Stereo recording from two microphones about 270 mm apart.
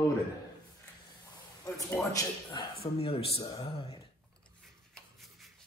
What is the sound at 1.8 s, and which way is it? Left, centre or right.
A man's voice, centre.